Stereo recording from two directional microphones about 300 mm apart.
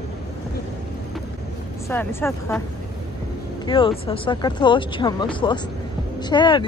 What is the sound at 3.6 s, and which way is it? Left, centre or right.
Speech, centre.